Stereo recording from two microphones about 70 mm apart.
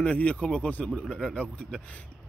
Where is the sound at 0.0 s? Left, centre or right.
Centre.